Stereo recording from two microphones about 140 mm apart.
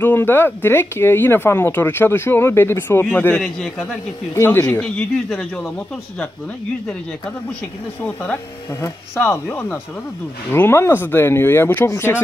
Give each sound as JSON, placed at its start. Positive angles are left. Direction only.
{"t": 0.0, "sound": "speech", "side_deg": 15}
{"t": 8.0, "sound": "speech", "side_deg": 10}